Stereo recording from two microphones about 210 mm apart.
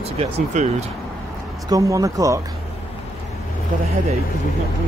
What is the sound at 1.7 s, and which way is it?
Speech, 15° right (ahead or behind).